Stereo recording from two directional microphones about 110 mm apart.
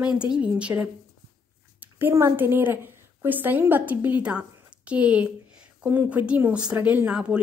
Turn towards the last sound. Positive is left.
turn(degrees=-10)  # may be behind; listen again after turning